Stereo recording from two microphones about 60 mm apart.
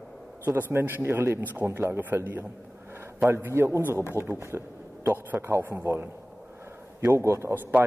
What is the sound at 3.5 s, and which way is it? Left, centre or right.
A man's voice, right.